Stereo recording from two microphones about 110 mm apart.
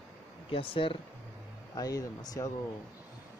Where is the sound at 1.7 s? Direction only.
35° left (ahead or behind).